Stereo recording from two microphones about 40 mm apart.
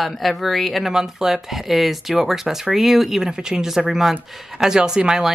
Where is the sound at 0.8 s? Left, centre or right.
Centre.